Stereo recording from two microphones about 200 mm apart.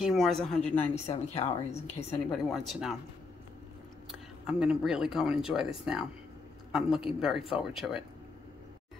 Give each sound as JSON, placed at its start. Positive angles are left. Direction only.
{"t": 0.0, "sound": "speech", "side_deg": 0}
{"t": 1.0, "sound": "speech", "side_deg": 35}
{"t": 1.7, "sound": "a woman's voice", "side_deg": 15}
{"t": 2.3, "sound": "speech", "side_deg": 0}
{"t": 4.1, "sound": "speech", "side_deg": -5}